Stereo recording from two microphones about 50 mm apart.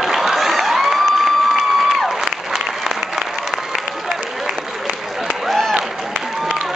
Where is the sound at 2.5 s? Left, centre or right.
Centre.